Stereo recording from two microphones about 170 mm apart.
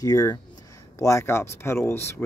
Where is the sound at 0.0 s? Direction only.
20° left (ahead or behind).